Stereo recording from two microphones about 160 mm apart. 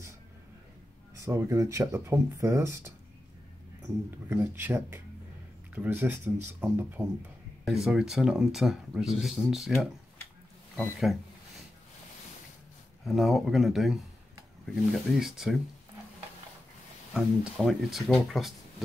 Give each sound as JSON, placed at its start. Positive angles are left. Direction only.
{"t": 1.2, "sound": "speech", "side_deg": -20}
{"t": 4.3, "sound": "speech", "side_deg": -10}
{"t": 7.6, "sound": "speech", "side_deg": 0}
{"t": 13.0, "sound": "speech", "side_deg": 0}
{"t": 17.1, "sound": "speech", "side_deg": 0}